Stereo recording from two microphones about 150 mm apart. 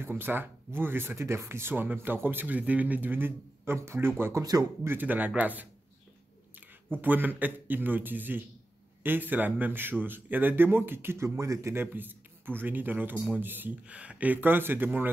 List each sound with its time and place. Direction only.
0.0 s speech: 15° right (ahead or behind)
4.9 s speech: 10° right (ahead or behind)
6.9 s speech: 10° right (ahead or behind)